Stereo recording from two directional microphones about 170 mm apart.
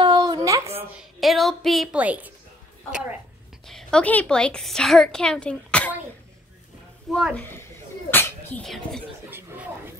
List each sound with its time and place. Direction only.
0.0 s a sound: 25° right (ahead or behind)
1.2 s a woman's voice: centre (ahead or behind)
3.6 s a woman's voice: 5° left (ahead or behind)
7.1 s a woman's voice: centre (ahead or behind)
8.1 s speech: 10° left (ahead or behind)